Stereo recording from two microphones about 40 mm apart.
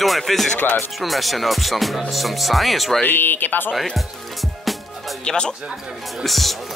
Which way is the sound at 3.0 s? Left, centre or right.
Left.